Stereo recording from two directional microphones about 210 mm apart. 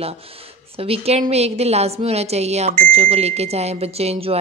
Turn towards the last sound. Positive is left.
turn(degrees=-30)  # may be behind; listen again after turning